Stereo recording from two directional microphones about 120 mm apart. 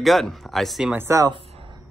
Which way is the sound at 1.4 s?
55° right (ahead or behind).